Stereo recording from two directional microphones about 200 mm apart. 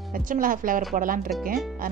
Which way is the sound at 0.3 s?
45° right (ahead or behind).